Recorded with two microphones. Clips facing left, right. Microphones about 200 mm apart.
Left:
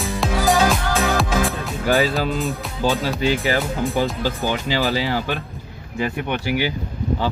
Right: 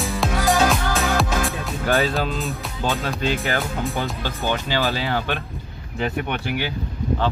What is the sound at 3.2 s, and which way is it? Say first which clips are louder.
Speech: left 3 dB; centre (ahead or behind).